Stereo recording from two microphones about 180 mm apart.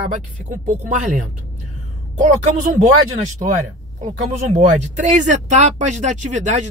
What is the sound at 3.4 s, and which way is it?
Speech, 35° right (ahead or behind).